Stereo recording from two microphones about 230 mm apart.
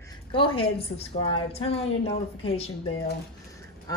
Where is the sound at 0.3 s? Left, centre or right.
Left.